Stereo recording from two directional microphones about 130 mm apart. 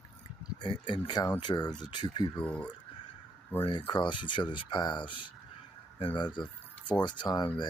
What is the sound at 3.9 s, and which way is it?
Speech, 40° left (ahead or behind).